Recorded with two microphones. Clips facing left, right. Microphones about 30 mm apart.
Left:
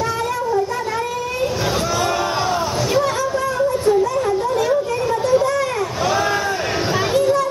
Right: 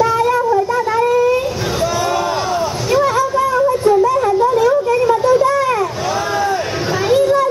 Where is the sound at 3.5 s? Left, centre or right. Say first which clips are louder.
Right 4 dB; centre.